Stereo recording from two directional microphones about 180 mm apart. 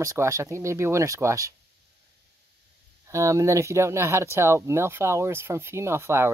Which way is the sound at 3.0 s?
15° right (ahead or behind).